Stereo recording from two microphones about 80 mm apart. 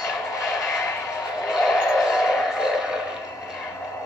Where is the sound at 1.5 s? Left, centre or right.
Centre.